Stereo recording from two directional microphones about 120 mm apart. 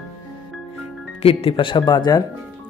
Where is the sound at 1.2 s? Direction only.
55° left (ahead or behind); by 2.2 s 35° left (ahead or behind).